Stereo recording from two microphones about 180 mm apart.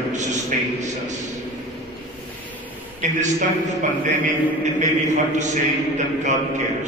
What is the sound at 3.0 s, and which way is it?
Speech, 45° right (ahead or behind).